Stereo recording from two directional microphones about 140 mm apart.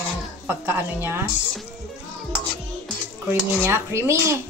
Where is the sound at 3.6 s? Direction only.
20° right (ahead or behind).